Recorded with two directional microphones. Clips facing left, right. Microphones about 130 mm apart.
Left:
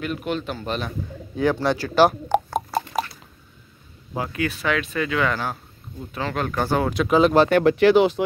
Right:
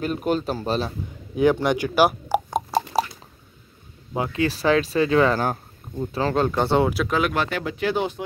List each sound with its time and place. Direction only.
0.0 s speech: 40° right (ahead or behind)
1.3 s speech: 20° right (ahead or behind)
2.7 s squish: 30° right (ahead or behind)
4.1 s speech: 25° right (ahead or behind)
4.5 s speech: 35° right (ahead or behind)
7.2 s speech: 30° left (ahead or behind)
7.4 s speech: 60° left (ahead or behind); by 8.2 s 90° left